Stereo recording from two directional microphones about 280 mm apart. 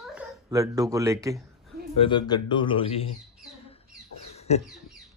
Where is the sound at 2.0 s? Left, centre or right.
Centre.